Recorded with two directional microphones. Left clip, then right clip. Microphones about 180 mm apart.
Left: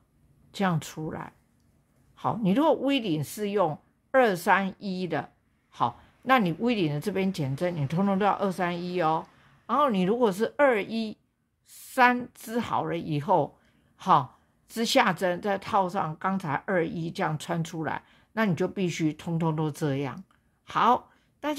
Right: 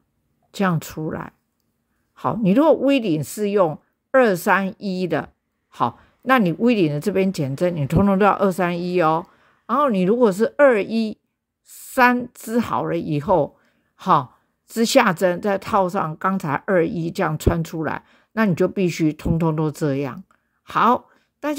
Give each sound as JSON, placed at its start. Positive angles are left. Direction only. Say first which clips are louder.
{"t": 0.5, "sound": "a woman's voice", "louder": "right 6 dB", "side_deg": -30}